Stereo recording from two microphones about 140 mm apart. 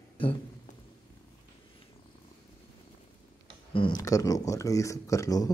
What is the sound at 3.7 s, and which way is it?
Speech, 40° left (ahead or behind).